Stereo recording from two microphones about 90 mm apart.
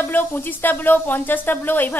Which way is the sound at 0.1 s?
20° left (ahead or behind).